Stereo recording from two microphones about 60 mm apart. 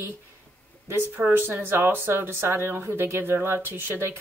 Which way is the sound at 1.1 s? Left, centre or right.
Right.